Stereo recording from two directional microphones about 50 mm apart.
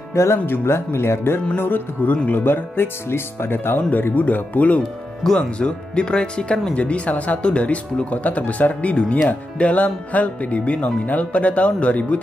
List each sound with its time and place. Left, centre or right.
0.1 s speech: left
0.5 s speech: left
1.6 s music: left
2.2 s speech: left
5.2 s speech: centre
6.7 s speech: left